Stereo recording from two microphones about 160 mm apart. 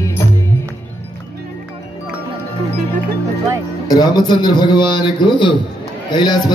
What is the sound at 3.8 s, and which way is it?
Speech, 25° left (ahead or behind).